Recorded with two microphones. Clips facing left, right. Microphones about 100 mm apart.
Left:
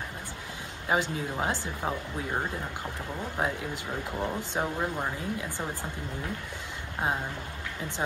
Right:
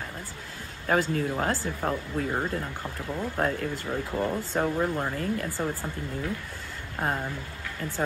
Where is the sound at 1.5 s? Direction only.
45° right (ahead or behind).